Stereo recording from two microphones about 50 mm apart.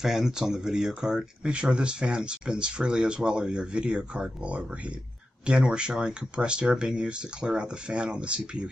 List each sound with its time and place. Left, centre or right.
0.0 s speech: centre